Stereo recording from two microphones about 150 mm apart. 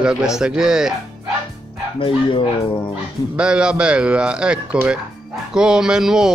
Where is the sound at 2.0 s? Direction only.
35° left (ahead or behind).